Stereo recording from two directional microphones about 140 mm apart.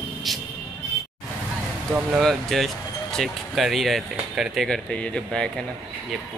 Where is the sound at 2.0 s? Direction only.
10° right (ahead or behind).